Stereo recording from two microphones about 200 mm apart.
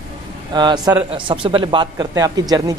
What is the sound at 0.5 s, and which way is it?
Speech, 20° right (ahead or behind).